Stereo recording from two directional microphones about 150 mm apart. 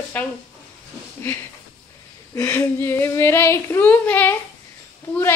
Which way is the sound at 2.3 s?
15° left (ahead or behind).